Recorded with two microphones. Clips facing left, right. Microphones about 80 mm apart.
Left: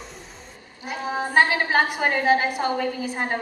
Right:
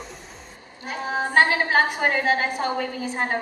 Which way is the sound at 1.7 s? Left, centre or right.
Centre.